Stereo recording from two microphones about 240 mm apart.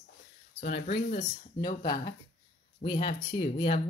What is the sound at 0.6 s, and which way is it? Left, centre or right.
Speech, left.